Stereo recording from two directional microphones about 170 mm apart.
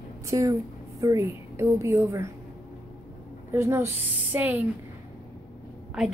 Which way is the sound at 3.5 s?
15° right (ahead or behind).